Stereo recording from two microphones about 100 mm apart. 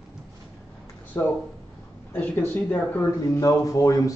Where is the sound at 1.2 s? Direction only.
30° left (ahead or behind).